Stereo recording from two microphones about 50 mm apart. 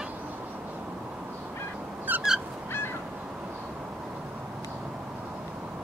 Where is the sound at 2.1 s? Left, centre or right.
Right.